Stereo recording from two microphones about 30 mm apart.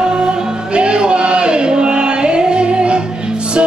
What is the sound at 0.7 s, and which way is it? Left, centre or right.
Music, right.